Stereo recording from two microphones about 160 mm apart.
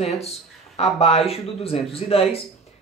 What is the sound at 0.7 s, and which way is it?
Speech, 40° left (ahead or behind).